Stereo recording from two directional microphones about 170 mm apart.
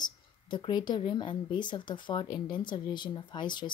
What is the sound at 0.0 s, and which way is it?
Speech, 25° left (ahead or behind).